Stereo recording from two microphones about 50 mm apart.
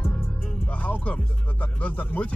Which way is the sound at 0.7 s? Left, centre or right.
Left.